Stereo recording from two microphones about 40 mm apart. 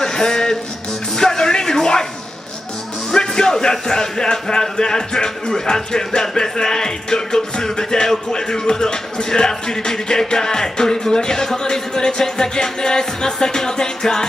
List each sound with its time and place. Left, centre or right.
0.0 s music: centre
1.1 s a sound: centre
3.1 s a man's voice: centre